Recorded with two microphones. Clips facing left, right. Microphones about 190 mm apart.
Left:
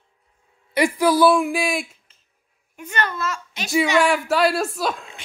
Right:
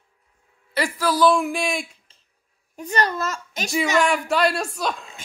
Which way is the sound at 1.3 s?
5° left (ahead or behind).